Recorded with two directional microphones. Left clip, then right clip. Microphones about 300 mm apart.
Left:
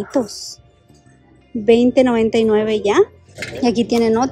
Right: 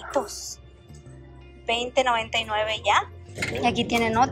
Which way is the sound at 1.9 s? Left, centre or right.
Left.